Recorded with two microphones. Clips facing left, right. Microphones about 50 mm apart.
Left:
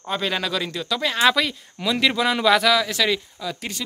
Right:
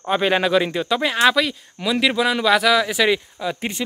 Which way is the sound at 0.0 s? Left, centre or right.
Right.